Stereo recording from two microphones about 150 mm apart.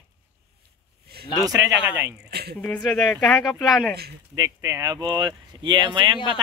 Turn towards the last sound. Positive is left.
turn(degrees=-35)  # may be behind; listen again after turning